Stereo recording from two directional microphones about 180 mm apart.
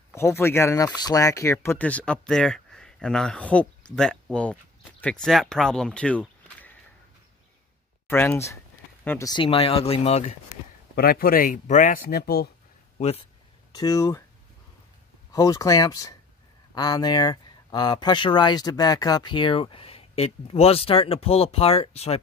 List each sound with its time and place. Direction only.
0.1 s speech: 15° left (ahead or behind)
8.1 s speech: 15° left (ahead or behind)
9.3 s speech: 30° left (ahead or behind)
11.0 s speech: 55° left (ahead or behind)
12.9 s speech: 35° left (ahead or behind)
13.7 s speech: 20° left (ahead or behind)
15.3 s speech: 20° left (ahead or behind)